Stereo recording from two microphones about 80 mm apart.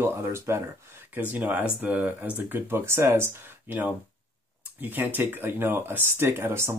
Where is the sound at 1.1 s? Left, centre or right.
Right.